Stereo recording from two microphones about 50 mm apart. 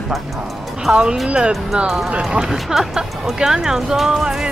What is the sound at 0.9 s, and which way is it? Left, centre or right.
Speech, right.